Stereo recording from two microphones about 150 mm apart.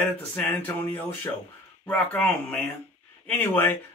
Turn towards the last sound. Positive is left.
turn(degrees=15)  # may be behind; listen again after turning